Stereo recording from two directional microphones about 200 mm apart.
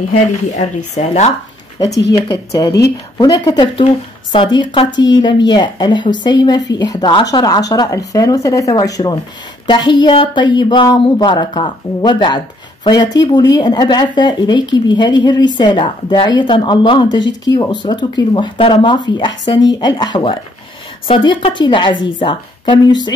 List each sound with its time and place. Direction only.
0.1 s speech: 35° left (ahead or behind)
1.9 s speech: 60° left (ahead or behind)
2.1 s speech: 15° left (ahead or behind)